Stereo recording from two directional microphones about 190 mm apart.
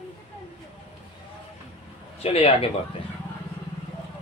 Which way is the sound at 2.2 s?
30° left (ahead or behind).